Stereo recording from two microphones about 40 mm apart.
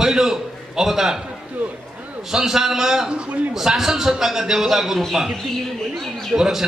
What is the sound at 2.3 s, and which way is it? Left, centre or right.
A man's voice, centre.